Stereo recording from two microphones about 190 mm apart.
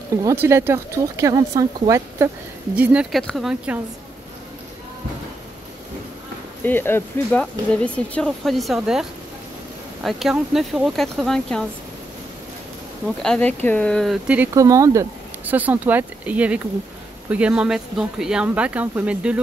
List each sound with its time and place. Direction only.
0.2 s speech: 15° right (ahead or behind)
2.7 s speech: 5° right (ahead or behind)
6.6 s speech: 10° left (ahead or behind)
10.0 s speech: centre (ahead or behind)
13.2 s speech: 5° left (ahead or behind)